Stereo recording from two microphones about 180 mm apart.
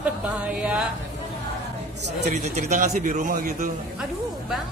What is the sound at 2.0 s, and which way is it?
Speech, 70° right (ahead or behind).